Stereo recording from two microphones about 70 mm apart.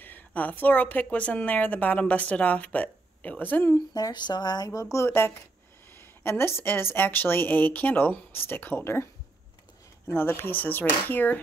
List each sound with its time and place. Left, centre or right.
0.0 s speech: left
3.7 s speech: left
4.6 s a woman's voice: left
10.1 s speech: left